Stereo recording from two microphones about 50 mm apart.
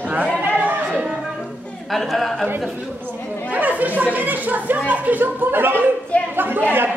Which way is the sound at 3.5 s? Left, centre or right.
Right.